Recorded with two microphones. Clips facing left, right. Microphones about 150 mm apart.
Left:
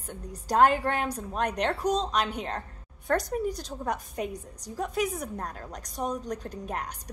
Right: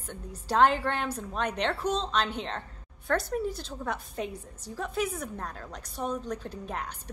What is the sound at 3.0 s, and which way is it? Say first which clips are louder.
Speech: left 1 dB; 40° left (ahead or behind).